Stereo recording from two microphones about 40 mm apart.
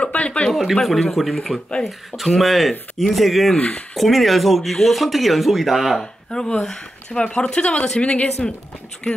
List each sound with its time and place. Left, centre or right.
0.0 s a sound: left
0.5 s speech: centre
6.3 s speech: centre
8.0 s speech: left